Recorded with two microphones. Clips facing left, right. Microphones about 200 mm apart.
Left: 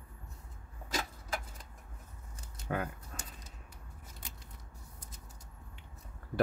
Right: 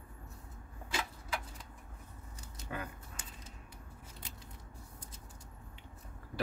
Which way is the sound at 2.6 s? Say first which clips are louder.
Left 6 dB; 55° left (ahead or behind).